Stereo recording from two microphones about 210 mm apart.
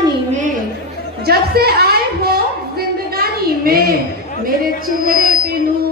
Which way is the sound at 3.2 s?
45° right (ahead or behind).